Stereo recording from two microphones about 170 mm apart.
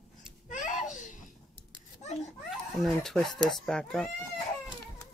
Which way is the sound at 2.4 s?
Centre (ahead or behind).